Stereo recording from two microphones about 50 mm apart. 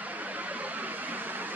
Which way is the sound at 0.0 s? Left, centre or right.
Right.